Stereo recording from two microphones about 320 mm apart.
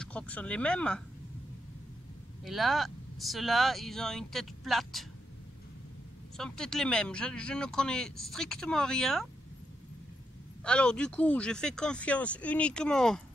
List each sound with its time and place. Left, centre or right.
0.0 s speech: centre
2.4 s speech: centre
6.3 s speech: centre
10.6 s speech: centre